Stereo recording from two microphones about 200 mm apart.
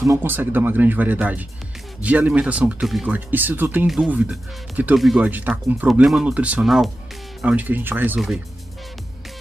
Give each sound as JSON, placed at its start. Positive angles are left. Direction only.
{"t": 0.0, "sound": "speech", "side_deg": -15}